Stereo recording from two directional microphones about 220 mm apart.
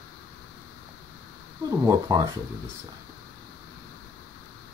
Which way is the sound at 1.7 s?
15° right (ahead or behind).